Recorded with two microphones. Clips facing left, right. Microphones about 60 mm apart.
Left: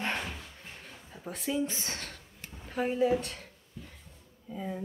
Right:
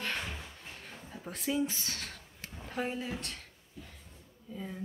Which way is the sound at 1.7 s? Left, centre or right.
Left.